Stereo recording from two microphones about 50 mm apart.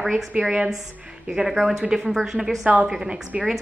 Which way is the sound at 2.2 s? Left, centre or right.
Centre.